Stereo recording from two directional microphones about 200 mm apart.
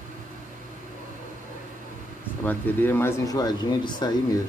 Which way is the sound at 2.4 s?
10° left (ahead or behind).